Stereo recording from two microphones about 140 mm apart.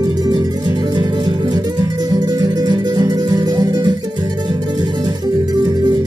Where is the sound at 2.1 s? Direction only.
30° right (ahead or behind).